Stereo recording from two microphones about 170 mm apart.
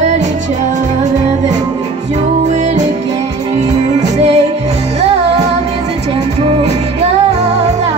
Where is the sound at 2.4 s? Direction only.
45° right (ahead or behind).